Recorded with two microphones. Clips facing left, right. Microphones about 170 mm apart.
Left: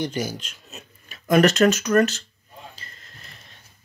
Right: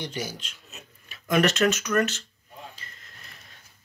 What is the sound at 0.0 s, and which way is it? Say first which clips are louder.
Speech: left 6 dB; 45° left (ahead or behind).